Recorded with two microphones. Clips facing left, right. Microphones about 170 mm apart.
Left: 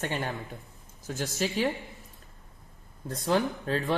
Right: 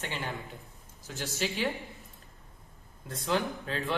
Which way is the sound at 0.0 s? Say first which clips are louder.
Left 5 dB; 45° left (ahead or behind).